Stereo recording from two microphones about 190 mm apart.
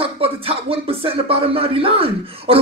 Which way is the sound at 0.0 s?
30° right (ahead or behind).